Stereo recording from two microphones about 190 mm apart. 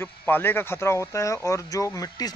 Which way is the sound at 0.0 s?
10° left (ahead or behind).